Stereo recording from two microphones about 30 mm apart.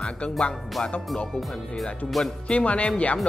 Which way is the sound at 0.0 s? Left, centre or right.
Left.